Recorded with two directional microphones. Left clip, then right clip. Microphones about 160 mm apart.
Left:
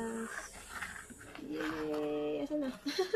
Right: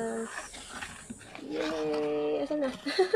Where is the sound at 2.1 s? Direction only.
35° left (ahead or behind).